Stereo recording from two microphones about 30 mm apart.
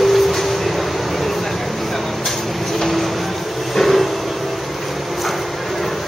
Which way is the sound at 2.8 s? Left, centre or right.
Centre.